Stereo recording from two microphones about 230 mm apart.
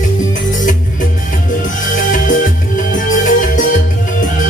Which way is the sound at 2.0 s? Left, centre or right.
Left.